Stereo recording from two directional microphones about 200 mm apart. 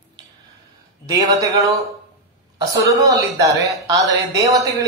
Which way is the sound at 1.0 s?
15° right (ahead or behind).